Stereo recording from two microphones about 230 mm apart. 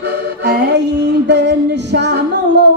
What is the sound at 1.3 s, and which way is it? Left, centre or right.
Music, right.